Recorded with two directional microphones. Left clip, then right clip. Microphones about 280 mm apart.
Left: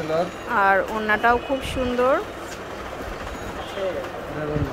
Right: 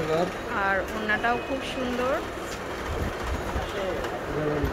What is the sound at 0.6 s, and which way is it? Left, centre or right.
Speech, centre.